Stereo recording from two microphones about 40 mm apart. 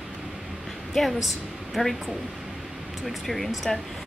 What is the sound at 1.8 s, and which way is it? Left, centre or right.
Speech, centre.